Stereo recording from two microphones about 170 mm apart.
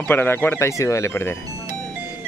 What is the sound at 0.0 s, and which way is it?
Speech, 15° left (ahead or behind).